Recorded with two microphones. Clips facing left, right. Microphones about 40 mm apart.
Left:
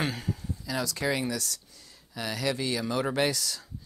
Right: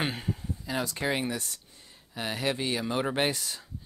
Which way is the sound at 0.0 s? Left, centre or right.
Right.